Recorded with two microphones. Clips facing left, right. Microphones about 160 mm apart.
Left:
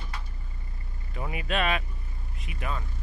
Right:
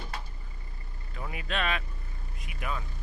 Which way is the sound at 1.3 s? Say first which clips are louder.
Left 4 dB; 10° left (ahead or behind).